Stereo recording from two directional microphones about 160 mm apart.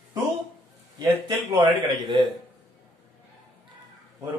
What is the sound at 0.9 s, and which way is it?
Speech, 30° right (ahead or behind).